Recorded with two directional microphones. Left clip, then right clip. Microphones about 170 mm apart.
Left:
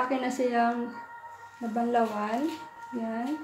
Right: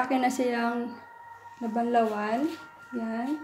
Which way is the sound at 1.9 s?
35° right (ahead or behind).